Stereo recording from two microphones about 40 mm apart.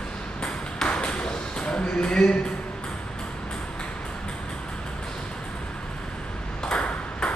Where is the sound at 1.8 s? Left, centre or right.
Left.